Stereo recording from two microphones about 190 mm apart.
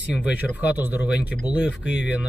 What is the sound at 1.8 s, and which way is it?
Speech, 65° left (ahead or behind).